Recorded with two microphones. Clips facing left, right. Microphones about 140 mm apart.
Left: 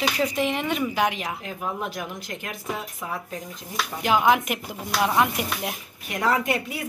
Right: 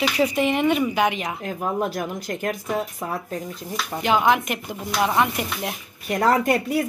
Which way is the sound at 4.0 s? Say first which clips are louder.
Right 1 dB; 5° left (ahead or behind).